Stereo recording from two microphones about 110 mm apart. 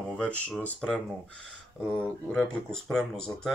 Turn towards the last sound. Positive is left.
turn(degrees=5)  # may be behind; listen again after turning